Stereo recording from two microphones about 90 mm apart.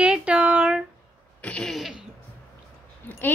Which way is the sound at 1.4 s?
10° left (ahead or behind).